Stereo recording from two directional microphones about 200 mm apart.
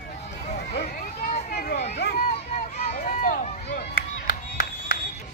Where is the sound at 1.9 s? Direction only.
55° left (ahead or behind).